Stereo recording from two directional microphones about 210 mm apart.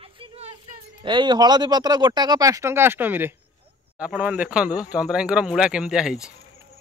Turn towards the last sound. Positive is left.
turn(degrees=-5)  # may be behind; listen again after turning